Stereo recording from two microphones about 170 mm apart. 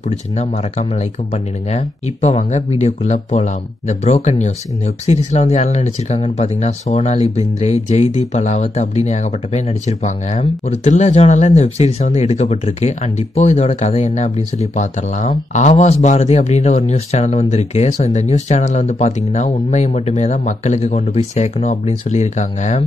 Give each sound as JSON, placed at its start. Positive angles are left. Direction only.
{"t": 0.4, "sound": "speech", "side_deg": 40}